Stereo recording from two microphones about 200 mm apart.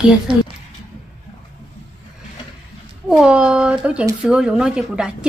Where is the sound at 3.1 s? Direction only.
5° right (ahead or behind).